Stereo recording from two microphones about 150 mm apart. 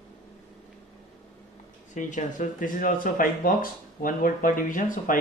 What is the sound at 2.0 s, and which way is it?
Speech, 60° left (ahead or behind).